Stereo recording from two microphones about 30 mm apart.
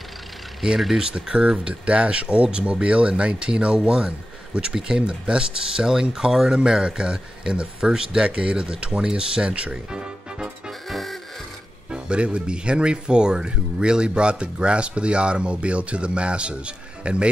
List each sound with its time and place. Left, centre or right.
1.1 s speech: right
5.6 s speech: right
9.8 s music: right
10.9 s music: centre
11.9 s speech: right